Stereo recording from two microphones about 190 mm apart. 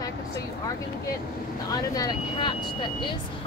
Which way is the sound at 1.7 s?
20° left (ahead or behind).